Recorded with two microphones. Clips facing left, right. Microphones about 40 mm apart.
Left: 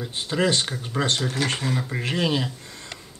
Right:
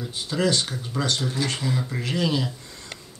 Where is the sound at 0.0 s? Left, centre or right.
Left.